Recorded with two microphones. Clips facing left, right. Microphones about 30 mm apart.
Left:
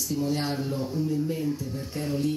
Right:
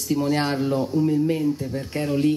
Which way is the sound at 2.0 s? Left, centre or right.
Right.